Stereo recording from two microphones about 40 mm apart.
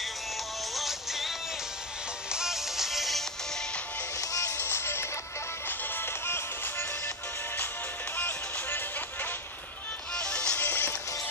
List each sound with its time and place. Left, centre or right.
0.7 s music: centre
2.3 s music: centre
4.6 s music: left
5.7 s music: left
8.2 s music: left
10.1 s music: left
10.6 s music: left